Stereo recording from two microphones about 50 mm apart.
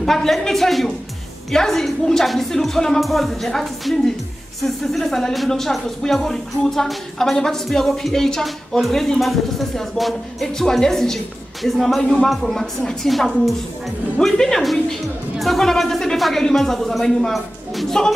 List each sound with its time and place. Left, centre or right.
0.0 s speech: centre
12.0 s speech: centre